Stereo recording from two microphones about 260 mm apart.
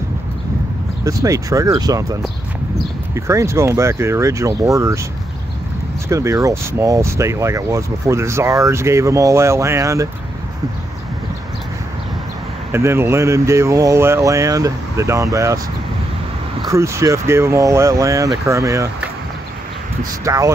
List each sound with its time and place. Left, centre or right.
1.0 s speech: centre
3.2 s speech: centre
6.0 s speech: centre
12.7 s speech: centre
16.6 s speech: centre